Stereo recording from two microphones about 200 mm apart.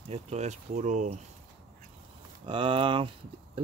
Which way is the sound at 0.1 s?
35° right (ahead or behind).